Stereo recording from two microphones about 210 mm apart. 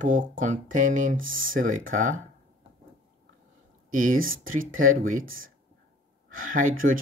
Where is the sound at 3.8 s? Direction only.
40° right (ahead or behind).